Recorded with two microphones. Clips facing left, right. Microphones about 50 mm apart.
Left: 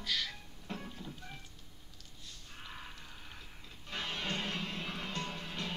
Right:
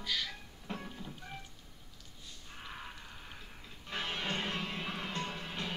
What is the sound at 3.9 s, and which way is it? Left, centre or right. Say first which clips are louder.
Music: right 1 dB; centre.